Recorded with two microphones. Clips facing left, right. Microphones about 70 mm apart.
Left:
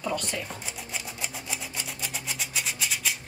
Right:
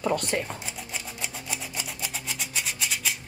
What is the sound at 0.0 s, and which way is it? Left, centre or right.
Speech, right.